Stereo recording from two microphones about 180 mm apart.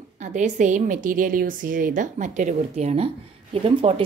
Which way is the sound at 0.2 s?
40° right (ahead or behind).